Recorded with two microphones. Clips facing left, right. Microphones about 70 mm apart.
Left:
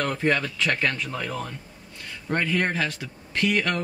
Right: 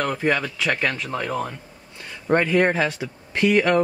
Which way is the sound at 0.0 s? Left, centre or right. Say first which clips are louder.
Right 2 dB; centre.